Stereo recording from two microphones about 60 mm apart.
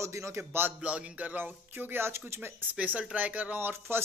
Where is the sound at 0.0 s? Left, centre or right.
Right.